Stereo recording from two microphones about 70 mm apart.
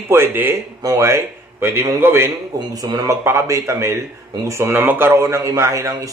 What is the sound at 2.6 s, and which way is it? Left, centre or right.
Speech, right.